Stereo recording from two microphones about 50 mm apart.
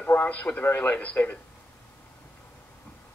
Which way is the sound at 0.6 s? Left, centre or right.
Left.